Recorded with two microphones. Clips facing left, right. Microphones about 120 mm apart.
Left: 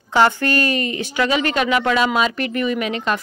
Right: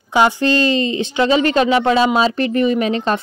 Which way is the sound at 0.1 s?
15° right (ahead or behind).